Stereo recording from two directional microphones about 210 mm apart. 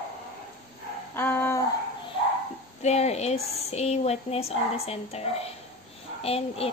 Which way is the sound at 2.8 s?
30° left (ahead or behind).